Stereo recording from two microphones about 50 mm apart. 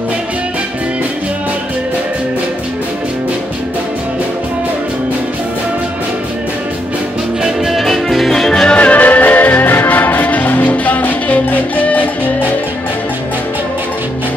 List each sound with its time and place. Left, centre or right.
7.4 s music: centre
8.7 s music: left